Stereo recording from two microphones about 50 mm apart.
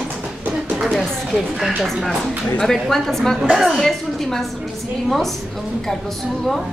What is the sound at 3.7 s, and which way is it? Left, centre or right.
A woman's voice, centre.